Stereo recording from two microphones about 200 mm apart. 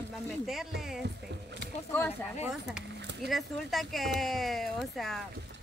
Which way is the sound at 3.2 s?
Centre (ahead or behind).